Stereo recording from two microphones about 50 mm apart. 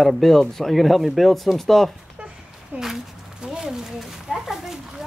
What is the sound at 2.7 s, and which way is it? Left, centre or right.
Speech, right.